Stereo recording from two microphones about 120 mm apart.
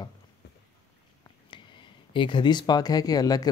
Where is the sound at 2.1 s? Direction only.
45° left (ahead or behind).